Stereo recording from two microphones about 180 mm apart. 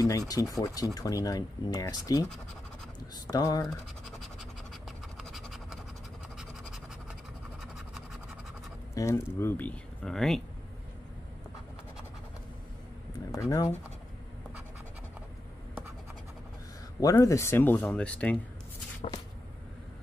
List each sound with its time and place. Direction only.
0.0 s speech: 20° left (ahead or behind)
3.3 s speech: 20° left (ahead or behind)
5.1 s scratch: centre (ahead or behind)
7.6 s scratch: 5° right (ahead or behind)
8.9 s speech: 15° left (ahead or behind)
13.3 s speech: 15° left (ahead or behind)
17.0 s speech: 20° left (ahead or behind)